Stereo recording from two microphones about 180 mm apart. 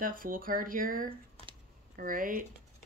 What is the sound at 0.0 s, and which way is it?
A woman's voice, 50° right (ahead or behind).